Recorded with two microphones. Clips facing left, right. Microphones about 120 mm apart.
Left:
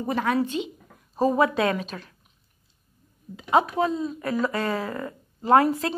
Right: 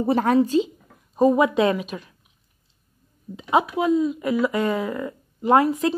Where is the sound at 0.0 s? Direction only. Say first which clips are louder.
Right 5 dB; 35° right (ahead or behind).